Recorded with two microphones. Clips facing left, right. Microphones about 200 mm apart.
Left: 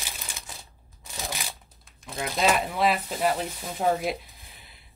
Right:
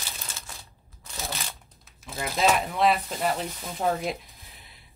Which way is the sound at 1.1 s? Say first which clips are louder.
Even; 15° left (ahead or behind).